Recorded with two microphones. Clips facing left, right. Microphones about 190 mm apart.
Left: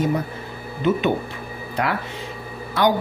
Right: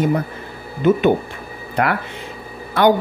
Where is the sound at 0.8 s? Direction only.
50° right (ahead or behind).